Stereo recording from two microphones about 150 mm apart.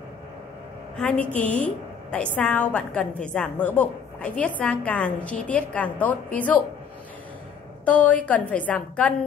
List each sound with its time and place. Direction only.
0.9 s a woman's voice: 10° left (ahead or behind)
7.8 s a woman's voice: 10° left (ahead or behind)